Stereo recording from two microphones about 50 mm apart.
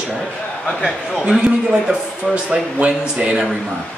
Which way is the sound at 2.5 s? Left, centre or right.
Right.